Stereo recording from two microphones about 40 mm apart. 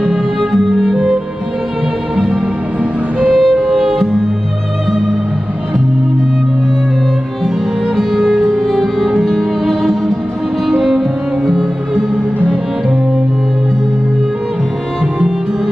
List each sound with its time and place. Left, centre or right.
0.0 s music: centre
2.8 s music: right
3.3 s music: centre
7.9 s music: centre